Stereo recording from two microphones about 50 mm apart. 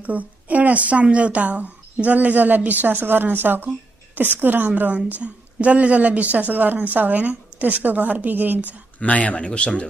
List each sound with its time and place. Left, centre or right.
0.0 s a woman's voice: right
8.6 s speech: left